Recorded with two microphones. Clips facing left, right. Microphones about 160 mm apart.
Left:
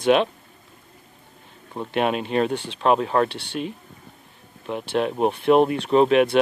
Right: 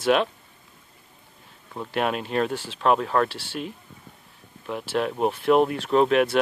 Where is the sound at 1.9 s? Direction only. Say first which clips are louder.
Left 3 dB; 5° left (ahead or behind).